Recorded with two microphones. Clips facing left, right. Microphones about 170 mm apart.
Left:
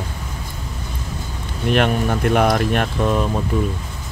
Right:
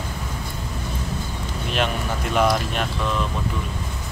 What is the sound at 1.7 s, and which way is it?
Speech, 55° left (ahead or behind).